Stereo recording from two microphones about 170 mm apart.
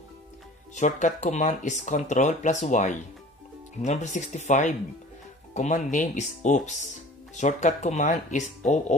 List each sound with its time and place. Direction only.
0.7 s speech: 45° left (ahead or behind)